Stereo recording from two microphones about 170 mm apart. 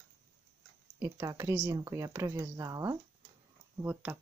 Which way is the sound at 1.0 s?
15° right (ahead or behind).